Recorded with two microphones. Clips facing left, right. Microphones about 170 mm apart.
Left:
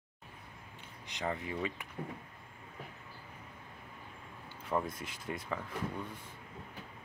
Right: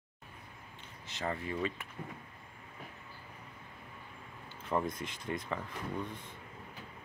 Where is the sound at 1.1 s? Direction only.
15° left (ahead or behind).